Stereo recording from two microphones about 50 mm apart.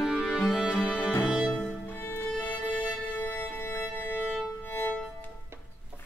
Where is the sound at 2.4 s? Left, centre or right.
Left.